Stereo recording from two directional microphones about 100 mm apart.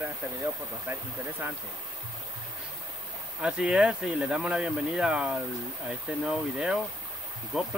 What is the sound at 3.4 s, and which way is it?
Speech, 10° right (ahead or behind).